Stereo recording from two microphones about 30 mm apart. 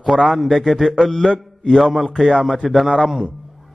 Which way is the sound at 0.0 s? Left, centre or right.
Centre.